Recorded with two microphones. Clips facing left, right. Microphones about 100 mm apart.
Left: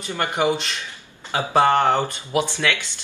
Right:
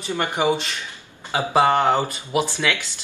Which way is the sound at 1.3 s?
10° right (ahead or behind).